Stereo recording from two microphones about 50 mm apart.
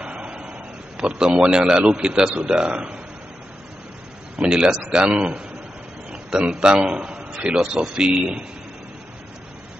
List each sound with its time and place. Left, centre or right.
0.0 s a man's voice: right
4.4 s a man's voice: centre
6.5 s a man's voice: centre
7.6 s a man's voice: centre